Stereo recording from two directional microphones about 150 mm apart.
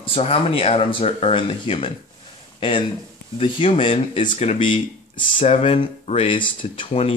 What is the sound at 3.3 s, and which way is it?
Speech, 35° left (ahead or behind).